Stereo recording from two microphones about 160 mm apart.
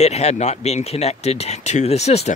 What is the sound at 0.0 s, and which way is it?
Speech, 45° left (ahead or behind).